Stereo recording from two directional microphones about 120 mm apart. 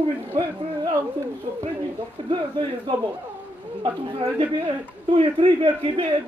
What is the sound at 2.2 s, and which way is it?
Speech, 40° right (ahead or behind).